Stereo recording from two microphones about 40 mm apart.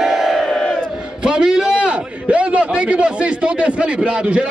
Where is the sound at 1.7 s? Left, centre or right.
Right.